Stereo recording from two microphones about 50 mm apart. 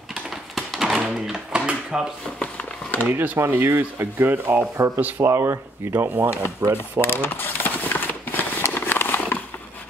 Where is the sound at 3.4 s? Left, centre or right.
Right.